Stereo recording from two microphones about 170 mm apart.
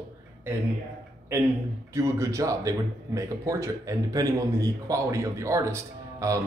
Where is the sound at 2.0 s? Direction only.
20° right (ahead or behind).